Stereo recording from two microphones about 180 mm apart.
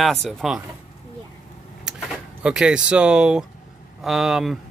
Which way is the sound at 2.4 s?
5° right (ahead or behind).